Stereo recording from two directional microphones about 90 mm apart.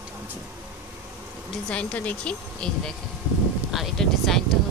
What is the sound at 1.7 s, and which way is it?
Speech, 15° left (ahead or behind).